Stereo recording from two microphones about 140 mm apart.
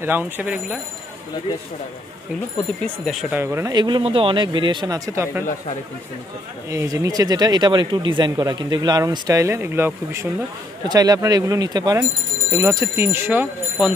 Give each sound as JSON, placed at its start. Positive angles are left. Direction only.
{"t": 0.0, "sound": "speech", "side_deg": -15}
{"t": 2.8, "sound": "speech", "side_deg": 0}
{"t": 3.3, "sound": "speech", "side_deg": -15}
{"t": 3.7, "sound": "speech", "side_deg": -35}
{"t": 6.7, "sound": "speech", "side_deg": -20}
{"t": 10.9, "sound": "speech", "side_deg": -30}